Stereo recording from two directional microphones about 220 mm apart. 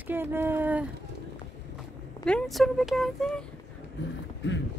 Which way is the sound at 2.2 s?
5° left (ahead or behind).